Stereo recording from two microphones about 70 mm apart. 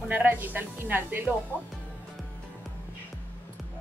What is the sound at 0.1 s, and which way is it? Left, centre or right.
Speech, right.